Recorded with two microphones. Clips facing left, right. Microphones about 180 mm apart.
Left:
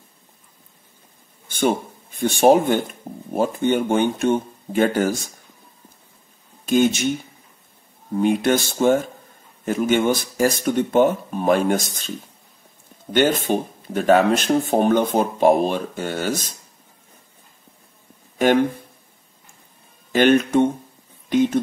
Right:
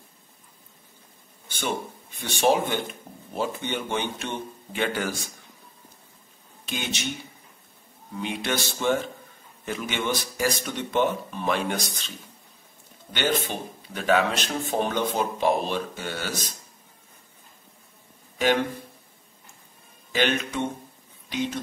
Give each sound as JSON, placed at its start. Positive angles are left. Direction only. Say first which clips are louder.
{"t": 1.5, "sound": "speech", "louder": "left 9 dB", "side_deg": 50}
{"t": 6.6, "sound": "speech", "louder": "left 15 dB", "side_deg": 45}
{"t": 8.2, "sound": "speech", "louder": "left 11 dB", "side_deg": 45}
{"t": 13.1, "sound": "speech", "louder": "left 8 dB", "side_deg": 45}
{"t": 20.1, "sound": "speech", "louder": "left 10 dB", "side_deg": 50}